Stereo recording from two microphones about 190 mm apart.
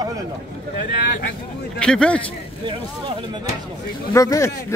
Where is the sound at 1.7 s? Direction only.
5° left (ahead or behind).